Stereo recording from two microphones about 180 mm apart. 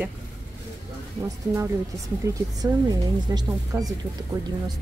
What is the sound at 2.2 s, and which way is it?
Speech, 15° right (ahead or behind).